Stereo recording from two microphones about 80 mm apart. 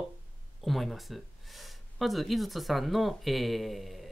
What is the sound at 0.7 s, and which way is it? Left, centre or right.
Speech, centre.